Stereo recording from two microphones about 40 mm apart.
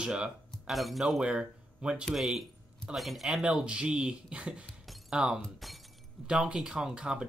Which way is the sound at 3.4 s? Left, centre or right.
Right.